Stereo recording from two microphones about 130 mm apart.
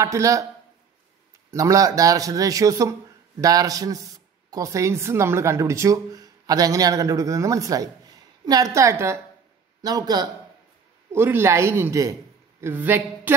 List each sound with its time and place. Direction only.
0.0 s speech: 25° right (ahead or behind)
1.5 s a man's voice: 25° right (ahead or behind)
11.1 s a man's voice: 15° right (ahead or behind)